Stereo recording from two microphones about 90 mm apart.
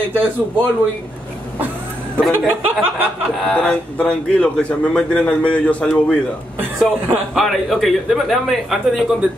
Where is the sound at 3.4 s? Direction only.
10° left (ahead or behind).